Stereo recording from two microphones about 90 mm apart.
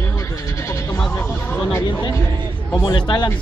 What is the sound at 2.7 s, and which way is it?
Speech, 50° left (ahead or behind).